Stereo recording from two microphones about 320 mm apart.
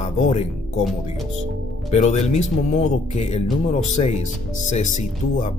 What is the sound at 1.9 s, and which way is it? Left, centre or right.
Speech, left.